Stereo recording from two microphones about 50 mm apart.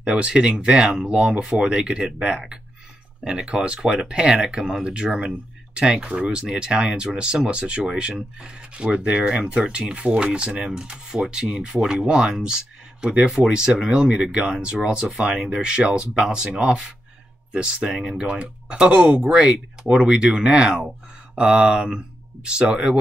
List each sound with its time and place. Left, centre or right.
0.0 s speech: centre
15.3 s speech: centre